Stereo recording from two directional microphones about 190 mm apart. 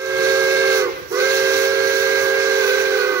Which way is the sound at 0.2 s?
15° right (ahead or behind).